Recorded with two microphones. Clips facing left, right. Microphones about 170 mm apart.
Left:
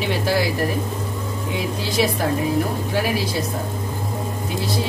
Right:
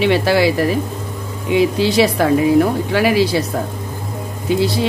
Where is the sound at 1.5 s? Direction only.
80° right.